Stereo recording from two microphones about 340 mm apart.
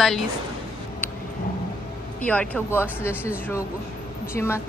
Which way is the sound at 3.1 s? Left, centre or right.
Centre.